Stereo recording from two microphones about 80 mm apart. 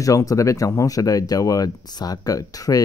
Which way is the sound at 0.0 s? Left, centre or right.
Left.